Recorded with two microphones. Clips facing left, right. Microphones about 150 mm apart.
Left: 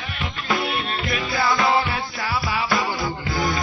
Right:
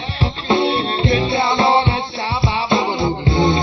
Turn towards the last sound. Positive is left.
turn(degrees=-25)  # may be behind; listen again after turning